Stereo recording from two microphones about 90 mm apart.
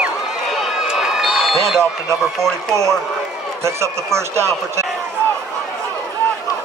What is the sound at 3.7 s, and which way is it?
Speech, 30° right (ahead or behind).